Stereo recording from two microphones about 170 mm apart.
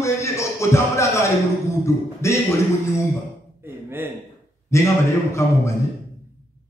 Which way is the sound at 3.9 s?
15° right (ahead or behind).